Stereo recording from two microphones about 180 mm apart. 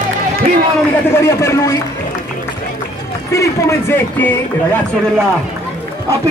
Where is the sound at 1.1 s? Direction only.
15° left (ahead or behind).